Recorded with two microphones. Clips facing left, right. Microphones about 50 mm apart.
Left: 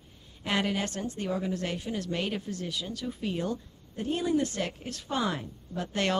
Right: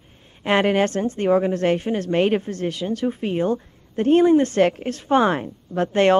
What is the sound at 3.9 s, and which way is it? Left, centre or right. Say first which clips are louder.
Speech: right 13 dB; right.